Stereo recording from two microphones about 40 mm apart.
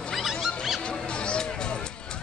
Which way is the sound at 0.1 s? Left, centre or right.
Centre.